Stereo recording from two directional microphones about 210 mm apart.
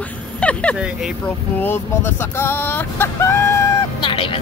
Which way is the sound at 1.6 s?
10° left (ahead or behind).